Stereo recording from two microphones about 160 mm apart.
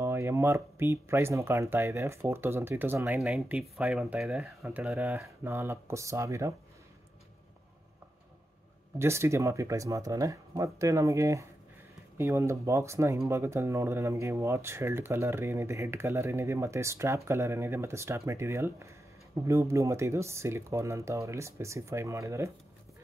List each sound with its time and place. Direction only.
0.0 s speech: 15° right (ahead or behind)
8.9 s speech: 15° right (ahead or behind)